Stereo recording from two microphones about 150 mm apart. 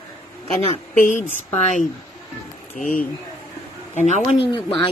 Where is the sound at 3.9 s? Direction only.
50° left (ahead or behind).